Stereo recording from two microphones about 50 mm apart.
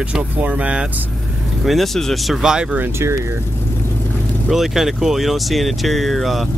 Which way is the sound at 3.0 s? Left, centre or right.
Right.